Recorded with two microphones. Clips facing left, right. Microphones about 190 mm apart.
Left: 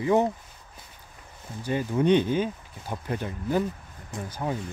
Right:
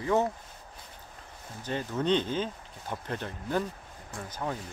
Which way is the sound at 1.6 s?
10° left (ahead or behind).